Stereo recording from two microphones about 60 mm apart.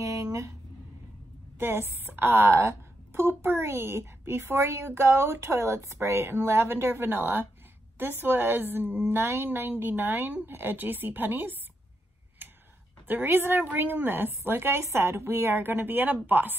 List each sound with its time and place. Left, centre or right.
0.0 s a sound: right
1.6 s a woman's voice: right
13.1 s a woman's voice: right